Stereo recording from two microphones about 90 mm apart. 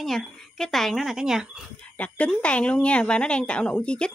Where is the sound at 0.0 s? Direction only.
5° left (ahead or behind).